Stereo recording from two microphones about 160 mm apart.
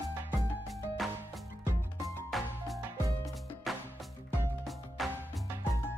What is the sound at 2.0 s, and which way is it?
Music, centre (ahead or behind).